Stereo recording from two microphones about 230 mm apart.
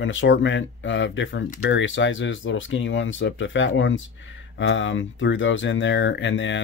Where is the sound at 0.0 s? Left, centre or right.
Left.